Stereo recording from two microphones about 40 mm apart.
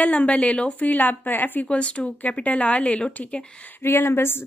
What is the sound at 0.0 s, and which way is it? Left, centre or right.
Speech, left.